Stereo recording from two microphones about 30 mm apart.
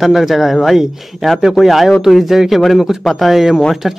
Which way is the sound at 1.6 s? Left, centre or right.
Centre.